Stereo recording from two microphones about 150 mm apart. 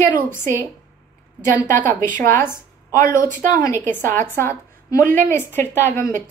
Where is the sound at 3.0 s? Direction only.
65° right (ahead or behind).